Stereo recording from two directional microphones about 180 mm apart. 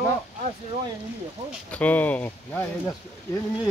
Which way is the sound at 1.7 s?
10° left (ahead or behind).